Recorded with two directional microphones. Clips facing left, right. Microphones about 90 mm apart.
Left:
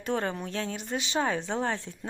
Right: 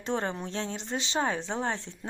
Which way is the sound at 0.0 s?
25° right (ahead or behind).